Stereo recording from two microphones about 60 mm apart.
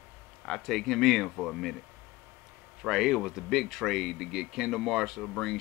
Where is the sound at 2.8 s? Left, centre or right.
Centre.